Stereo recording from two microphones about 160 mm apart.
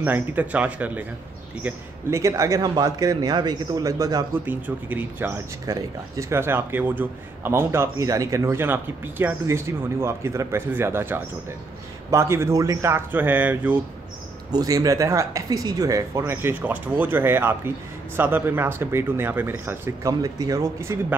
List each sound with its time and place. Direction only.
0.0 s speech: 10° right (ahead or behind)
14.5 s speech: 20° right (ahead or behind)